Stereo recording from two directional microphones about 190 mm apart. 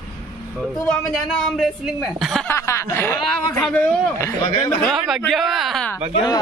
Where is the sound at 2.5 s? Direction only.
15° left (ahead or behind).